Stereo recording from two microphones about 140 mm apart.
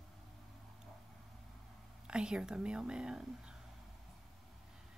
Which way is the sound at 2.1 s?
5° right (ahead or behind).